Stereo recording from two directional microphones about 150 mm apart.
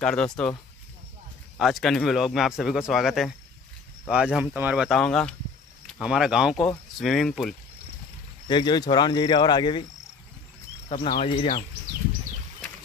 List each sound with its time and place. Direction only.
0.0 s speech: 5° left (ahead or behind)
1.6 s speech: centre (ahead or behind)
4.8 s speech: centre (ahead or behind)
8.5 s speech: 30° left (ahead or behind)
10.9 s speech: 40° left (ahead or behind)